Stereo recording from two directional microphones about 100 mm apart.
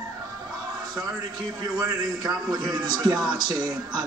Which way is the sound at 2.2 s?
40° right (ahead or behind).